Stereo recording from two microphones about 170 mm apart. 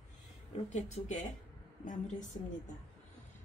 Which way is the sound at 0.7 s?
45° left (ahead or behind).